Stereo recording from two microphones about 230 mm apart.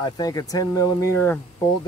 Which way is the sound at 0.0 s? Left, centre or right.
Centre.